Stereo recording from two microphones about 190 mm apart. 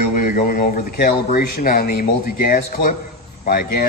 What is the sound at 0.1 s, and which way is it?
Speech, 45° left (ahead or behind).